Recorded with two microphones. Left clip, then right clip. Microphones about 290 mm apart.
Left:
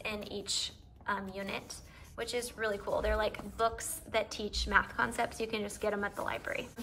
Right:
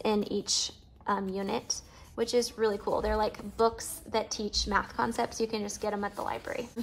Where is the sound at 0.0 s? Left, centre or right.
Centre.